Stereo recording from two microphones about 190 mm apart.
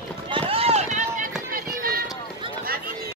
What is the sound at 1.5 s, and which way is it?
Run, 50° right (ahead or behind).